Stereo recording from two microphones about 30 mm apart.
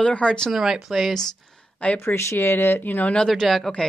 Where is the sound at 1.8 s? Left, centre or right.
Left.